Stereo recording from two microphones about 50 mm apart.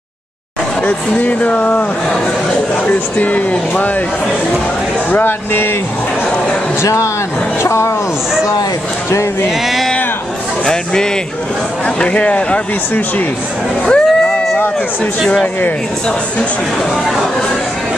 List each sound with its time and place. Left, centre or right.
0.8 s speech: left
2.9 s speech: left
5.1 s speech: left
6.8 s speech: left
7.6 s speech: left
10.6 s speech: centre
13.8 s a sound: centre